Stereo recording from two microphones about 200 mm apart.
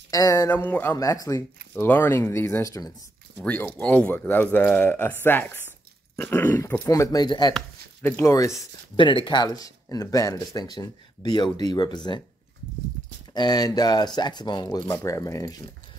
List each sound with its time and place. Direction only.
0.1 s speech: 15° left (ahead or behind)
13.3 s speech: 20° left (ahead or behind)